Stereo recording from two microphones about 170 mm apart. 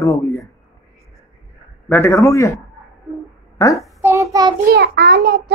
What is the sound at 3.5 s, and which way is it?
Speech, 20° left (ahead or behind).